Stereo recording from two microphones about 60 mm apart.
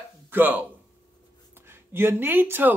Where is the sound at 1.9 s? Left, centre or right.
Right.